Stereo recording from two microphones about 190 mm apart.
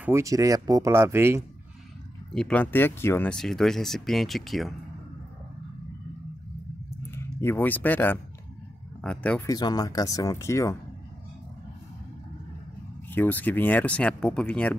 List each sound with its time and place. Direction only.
0.0 s speech: 15° right (ahead or behind)
2.3 s speech: 5° left (ahead or behind)
7.1 s speech: 15° left (ahead or behind)
9.5 s speech: 20° left (ahead or behind)
13.1 s speech: 10° left (ahead or behind)